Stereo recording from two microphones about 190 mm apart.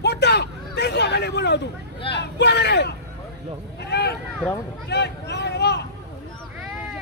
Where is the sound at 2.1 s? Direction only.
65° left (ahead or behind).